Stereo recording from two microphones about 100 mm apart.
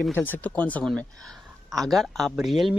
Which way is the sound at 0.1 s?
20° left (ahead or behind).